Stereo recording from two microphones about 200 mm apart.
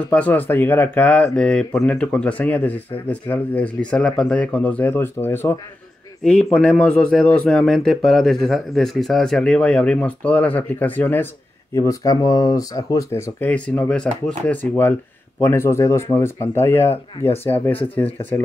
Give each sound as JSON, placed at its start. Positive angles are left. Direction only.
{"t": 0.0, "sound": "speech", "side_deg": 5}